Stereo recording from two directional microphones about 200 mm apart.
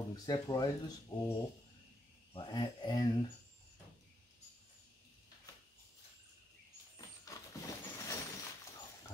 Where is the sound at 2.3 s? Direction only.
20° left (ahead or behind).